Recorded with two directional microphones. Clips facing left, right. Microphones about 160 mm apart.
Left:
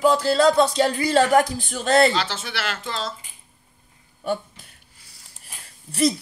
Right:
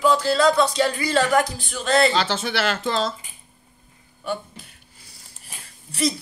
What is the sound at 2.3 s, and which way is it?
Speech, 30° right (ahead or behind).